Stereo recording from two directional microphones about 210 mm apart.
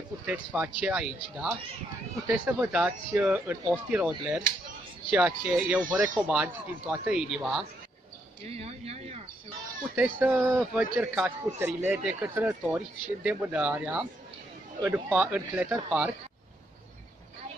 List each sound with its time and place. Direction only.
0.3 s a man's voice: 5° right (ahead or behind)
8.5 s speech: 30° right (ahead or behind)
9.9 s a man's voice: 5° right (ahead or behind)